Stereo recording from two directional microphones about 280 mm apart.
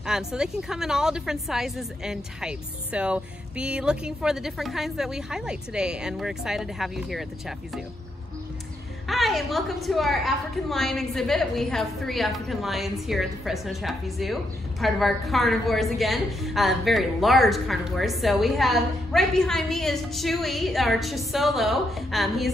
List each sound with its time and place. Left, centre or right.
0.0 s a woman's voice: centre
9.0 s a woman's voice: centre